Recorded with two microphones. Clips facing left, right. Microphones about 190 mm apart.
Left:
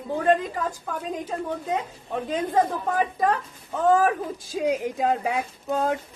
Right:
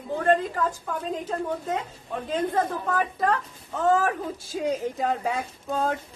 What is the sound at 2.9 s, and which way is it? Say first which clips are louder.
A woman's voice: left 2 dB; 15° left (ahead or behind).